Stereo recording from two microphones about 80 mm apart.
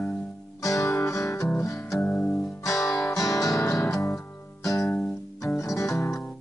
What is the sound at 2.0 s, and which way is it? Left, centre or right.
Music, centre.